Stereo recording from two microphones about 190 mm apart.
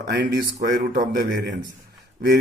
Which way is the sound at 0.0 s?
65° right (ahead or behind).